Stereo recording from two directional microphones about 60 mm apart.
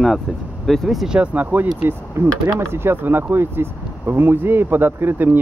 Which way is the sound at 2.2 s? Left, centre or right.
Right.